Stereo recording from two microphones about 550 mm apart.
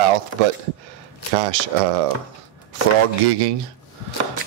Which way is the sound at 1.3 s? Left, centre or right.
Right.